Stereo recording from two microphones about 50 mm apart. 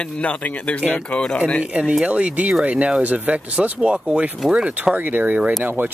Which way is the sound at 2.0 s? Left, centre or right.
Right.